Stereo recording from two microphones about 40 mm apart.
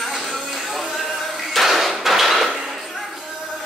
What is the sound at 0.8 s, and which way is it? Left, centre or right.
Music, centre.